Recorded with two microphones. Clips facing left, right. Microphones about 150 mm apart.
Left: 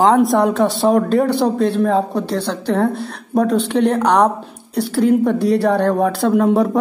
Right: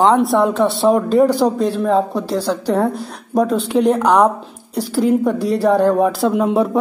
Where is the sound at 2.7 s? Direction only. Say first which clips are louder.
Left 1 dB; 35° right (ahead or behind).